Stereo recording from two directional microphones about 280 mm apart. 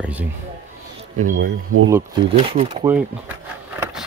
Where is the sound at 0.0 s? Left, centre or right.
Centre.